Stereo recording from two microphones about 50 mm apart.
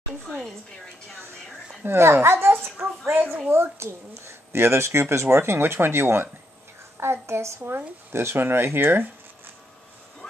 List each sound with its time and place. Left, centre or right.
1.9 s speech: right